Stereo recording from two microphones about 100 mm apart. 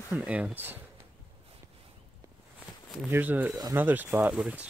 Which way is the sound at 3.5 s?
40° right (ahead or behind).